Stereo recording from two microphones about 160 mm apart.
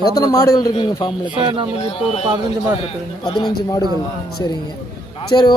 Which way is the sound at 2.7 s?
30° left (ahead or behind).